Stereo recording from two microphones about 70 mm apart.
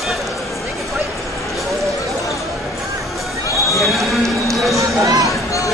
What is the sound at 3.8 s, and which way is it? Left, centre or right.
Basketball bounce, centre.